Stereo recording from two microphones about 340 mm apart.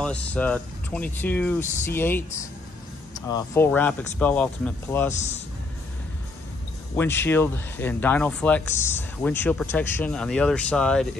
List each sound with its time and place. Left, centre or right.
0.0 s speech: centre
5.1 s speech: centre
7.0 s speech: centre